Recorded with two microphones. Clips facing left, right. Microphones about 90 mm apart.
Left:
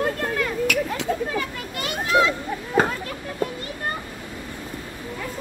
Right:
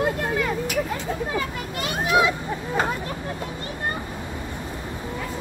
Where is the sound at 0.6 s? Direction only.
80° left.